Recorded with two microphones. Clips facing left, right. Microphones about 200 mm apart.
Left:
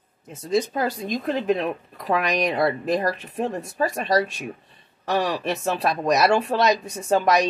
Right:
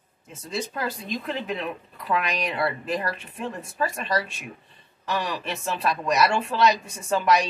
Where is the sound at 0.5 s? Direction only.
40° left (ahead or behind).